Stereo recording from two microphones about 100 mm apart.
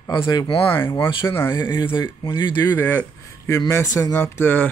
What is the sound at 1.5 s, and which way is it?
Speech, 50° left (ahead or behind).